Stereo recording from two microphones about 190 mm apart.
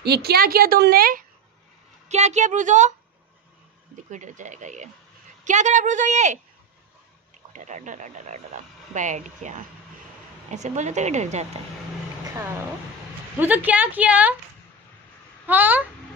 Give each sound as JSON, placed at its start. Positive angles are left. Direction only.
{"t": 0.0, "sound": "a woman's voice", "side_deg": -60}
{"t": 2.0, "sound": "speech", "side_deg": -35}
{"t": 4.1, "sound": "speech", "side_deg": -40}
{"t": 7.5, "sound": "speech", "side_deg": -40}
{"t": 13.4, "sound": "a woman's voice", "side_deg": -10}
{"t": 15.4, "sound": "a woman's voice", "side_deg": -10}